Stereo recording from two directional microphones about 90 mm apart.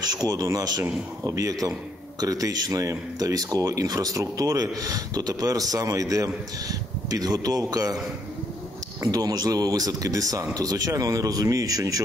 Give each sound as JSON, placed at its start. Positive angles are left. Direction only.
{"t": 0.0, "sound": "speech", "side_deg": -45}
{"t": 9.0, "sound": "speech", "side_deg": -40}